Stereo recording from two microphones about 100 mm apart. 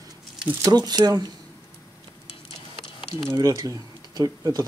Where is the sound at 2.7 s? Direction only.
65° left (ahead or behind).